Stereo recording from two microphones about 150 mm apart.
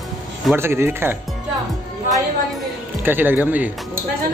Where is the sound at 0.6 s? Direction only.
15° right (ahead or behind).